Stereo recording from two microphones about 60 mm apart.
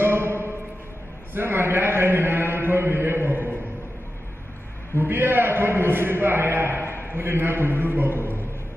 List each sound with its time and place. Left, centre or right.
0.0 s music: right
1.3 s a man's voice: right
4.9 s a man's voice: right